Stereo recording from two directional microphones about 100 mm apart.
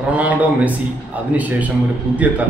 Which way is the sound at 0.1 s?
15° right (ahead or behind).